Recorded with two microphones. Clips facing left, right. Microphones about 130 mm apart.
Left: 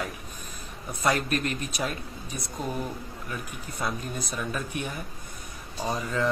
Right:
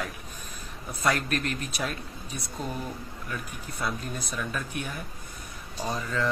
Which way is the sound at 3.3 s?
10° left (ahead or behind).